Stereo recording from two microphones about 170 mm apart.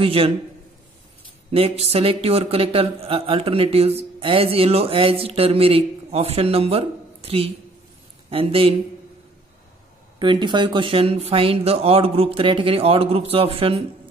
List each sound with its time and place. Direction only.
0.0 s speech: 35° right (ahead or behind)
1.5 s speech: 35° right (ahead or behind)
10.1 s speech: 25° right (ahead or behind)